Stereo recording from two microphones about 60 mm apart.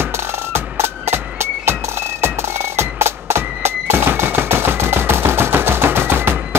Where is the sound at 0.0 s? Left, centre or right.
Right.